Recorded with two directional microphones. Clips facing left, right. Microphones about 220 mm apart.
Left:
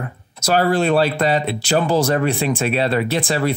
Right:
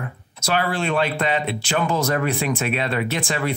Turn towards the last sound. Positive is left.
turn(degrees=35)  # may be behind; listen again after turning